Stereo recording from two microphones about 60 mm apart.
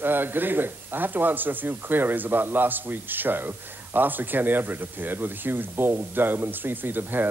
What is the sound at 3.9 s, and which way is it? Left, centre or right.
Speech, right.